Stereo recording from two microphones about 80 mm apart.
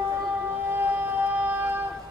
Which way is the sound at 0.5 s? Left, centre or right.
Right.